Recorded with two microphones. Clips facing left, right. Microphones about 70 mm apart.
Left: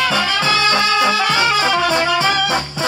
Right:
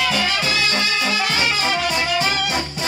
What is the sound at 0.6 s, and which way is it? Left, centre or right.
Music, left.